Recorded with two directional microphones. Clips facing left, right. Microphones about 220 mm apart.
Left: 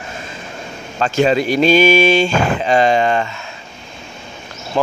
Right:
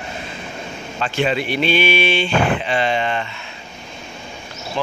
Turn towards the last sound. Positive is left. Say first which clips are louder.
# left 6 dB
turn(degrees=45)  # may be behind; listen again after turning